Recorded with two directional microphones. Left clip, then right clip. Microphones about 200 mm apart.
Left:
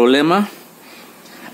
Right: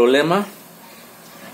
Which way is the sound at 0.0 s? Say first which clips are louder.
Left 2 dB; 50° left (ahead or behind).